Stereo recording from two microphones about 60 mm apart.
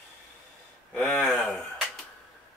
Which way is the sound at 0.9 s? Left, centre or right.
Left.